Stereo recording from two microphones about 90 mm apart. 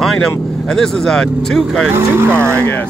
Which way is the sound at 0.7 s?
5° left (ahead or behind).